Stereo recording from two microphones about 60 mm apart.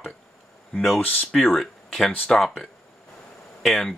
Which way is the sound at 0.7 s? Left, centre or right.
Centre.